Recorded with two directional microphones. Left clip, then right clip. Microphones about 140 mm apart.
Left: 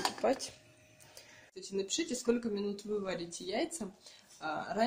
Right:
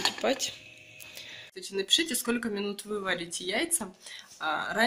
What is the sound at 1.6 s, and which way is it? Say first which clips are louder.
Speech: right 9 dB; centre (ahead or behind).